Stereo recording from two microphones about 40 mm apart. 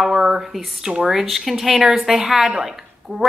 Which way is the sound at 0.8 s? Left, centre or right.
Centre.